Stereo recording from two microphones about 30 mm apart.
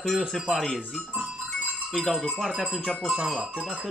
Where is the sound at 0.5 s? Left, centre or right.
Centre.